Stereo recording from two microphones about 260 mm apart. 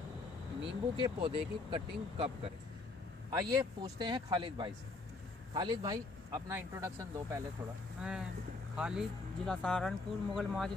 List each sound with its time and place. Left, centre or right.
0.6 s speech: centre